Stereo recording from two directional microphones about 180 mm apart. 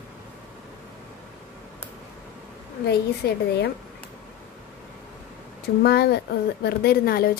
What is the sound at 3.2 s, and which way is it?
Speech, 65° left (ahead or behind).